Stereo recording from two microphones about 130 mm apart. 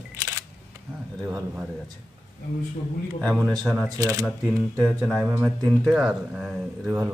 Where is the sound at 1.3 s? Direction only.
10° right (ahead or behind).